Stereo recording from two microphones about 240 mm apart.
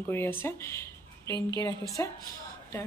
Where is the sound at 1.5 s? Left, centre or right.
Centre.